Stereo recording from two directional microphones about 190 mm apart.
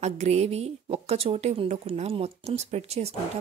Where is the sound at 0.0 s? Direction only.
35° right (ahead or behind).